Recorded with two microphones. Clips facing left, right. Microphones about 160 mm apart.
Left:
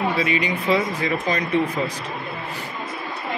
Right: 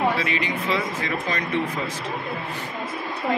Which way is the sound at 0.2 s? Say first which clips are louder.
Left 3 dB; 15° left (ahead or behind).